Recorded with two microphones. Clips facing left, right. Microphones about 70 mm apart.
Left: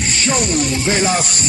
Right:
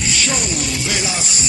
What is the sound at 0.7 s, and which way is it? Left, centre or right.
Music, left.